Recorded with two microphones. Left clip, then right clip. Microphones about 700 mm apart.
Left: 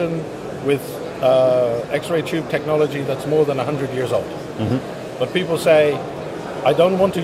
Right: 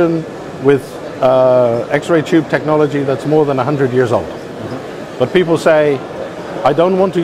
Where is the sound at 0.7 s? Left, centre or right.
Right.